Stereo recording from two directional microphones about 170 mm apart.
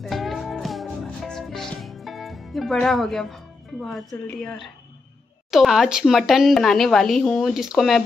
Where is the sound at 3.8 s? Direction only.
Centre (ahead or behind).